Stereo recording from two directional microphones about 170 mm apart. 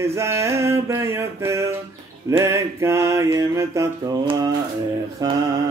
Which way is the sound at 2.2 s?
20° right (ahead or behind).